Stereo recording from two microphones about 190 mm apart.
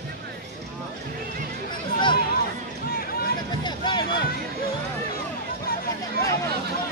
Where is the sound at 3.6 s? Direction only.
25° left (ahead or behind).